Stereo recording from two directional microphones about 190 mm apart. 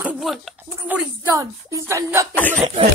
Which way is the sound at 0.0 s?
5° right (ahead or behind).